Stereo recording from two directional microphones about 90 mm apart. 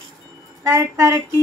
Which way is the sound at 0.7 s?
35° right (ahead or behind).